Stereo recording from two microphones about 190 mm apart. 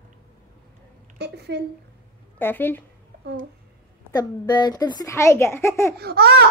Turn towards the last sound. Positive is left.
turn(degrees=-55)  # may be behind; listen again after turning